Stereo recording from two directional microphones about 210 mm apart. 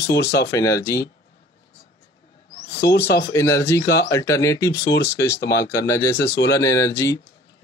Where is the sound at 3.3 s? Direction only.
15° left (ahead or behind).